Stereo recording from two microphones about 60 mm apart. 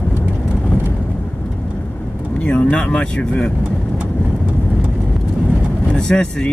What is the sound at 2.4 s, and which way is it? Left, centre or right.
Speech, centre.